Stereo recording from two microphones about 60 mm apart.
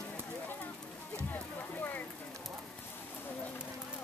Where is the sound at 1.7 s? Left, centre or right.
Left.